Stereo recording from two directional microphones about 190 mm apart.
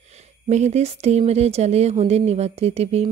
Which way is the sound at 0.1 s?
35° right (ahead or behind).